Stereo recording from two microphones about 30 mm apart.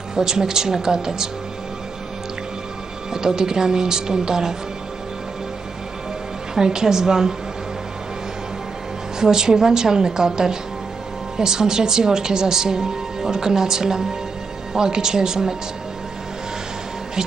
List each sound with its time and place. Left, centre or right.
0.1 s speech: centre
3.1 s speech: centre
6.5 s speech: right
9.2 s speech: right